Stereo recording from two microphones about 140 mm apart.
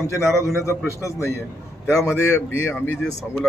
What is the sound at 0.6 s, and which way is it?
A man's voice, 20° left (ahead or behind).